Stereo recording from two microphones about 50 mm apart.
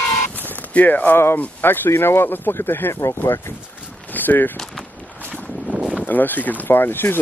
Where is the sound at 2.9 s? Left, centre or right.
Left.